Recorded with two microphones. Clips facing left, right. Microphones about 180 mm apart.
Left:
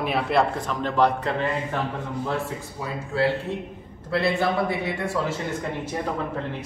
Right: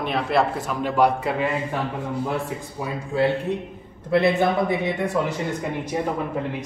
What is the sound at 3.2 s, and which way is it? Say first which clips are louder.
A man's voice: right 2 dB; 20° right (ahead or behind).